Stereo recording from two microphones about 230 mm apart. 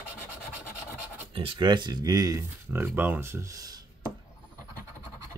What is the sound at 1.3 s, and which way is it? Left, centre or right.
Speech, right.